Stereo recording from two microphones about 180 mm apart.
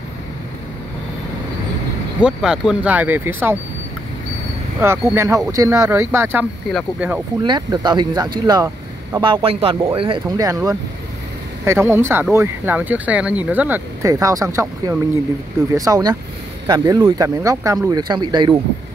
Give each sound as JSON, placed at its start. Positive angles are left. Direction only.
{"t": 2.2, "sound": "speech", "side_deg": -5}
{"t": 4.8, "sound": "speech", "side_deg": -15}
{"t": 7.4, "sound": "speech", "side_deg": -25}
{"t": 8.5, "sound": "vehicle", "side_deg": -20}
{"t": 9.2, "sound": "speech", "side_deg": -30}